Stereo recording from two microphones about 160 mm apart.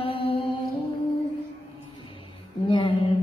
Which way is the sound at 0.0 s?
35° left (ahead or behind).